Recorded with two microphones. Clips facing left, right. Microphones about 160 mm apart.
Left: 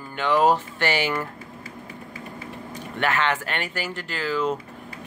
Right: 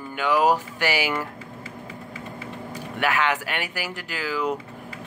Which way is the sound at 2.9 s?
10° right (ahead or behind).